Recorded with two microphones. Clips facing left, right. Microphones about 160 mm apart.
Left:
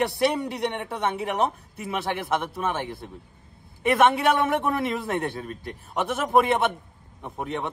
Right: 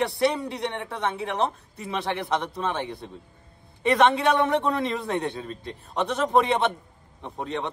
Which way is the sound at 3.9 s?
10° left (ahead or behind).